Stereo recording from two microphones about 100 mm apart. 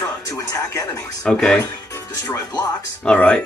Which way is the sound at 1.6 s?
30° left (ahead or behind).